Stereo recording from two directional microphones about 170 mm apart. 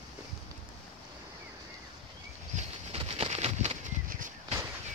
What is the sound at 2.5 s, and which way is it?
Bird flight, 35° right (ahead or behind).